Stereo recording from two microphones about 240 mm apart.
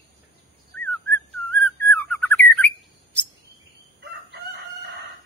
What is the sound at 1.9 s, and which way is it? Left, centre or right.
Bird, centre.